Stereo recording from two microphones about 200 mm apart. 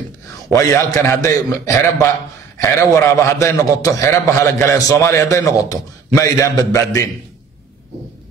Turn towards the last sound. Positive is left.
turn(degrees=15)  # may be behind; listen again after turning